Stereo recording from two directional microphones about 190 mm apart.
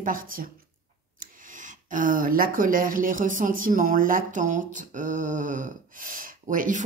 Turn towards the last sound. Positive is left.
turn(degrees=-45)  # may be behind; listen again after turning